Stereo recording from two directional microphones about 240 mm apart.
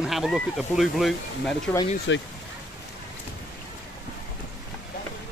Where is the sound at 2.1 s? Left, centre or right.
Left.